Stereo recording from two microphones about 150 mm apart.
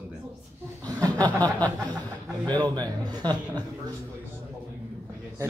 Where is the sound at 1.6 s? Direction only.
25° right (ahead or behind).